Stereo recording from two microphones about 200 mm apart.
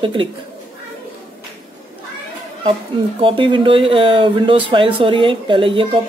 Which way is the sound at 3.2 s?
25° right (ahead or behind).